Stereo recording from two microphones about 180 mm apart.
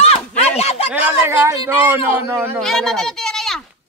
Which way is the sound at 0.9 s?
10° right (ahead or behind).